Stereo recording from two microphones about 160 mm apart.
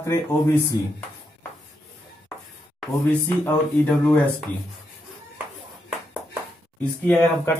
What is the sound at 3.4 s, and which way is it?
Speech, 10° left (ahead or behind).